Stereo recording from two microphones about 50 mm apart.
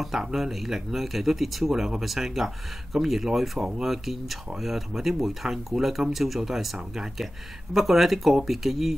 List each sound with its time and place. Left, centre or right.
0.0 s speech: centre
3.5 s speech: centre
3.8 s speech: centre